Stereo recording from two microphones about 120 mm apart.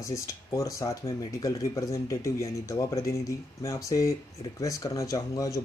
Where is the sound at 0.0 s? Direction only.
25° left (ahead or behind).